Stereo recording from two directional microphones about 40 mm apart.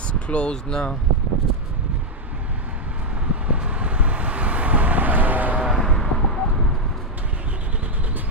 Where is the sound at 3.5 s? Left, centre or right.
Right.